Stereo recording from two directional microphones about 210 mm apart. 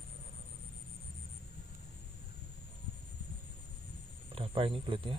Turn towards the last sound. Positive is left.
turn(degrees=-25)  # may be behind; listen again after turning